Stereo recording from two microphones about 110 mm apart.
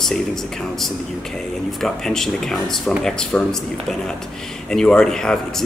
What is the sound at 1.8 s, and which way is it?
Speech, 5° left (ahead or behind).